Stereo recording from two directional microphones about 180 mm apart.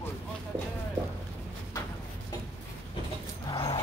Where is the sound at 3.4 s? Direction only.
25° left (ahead or behind).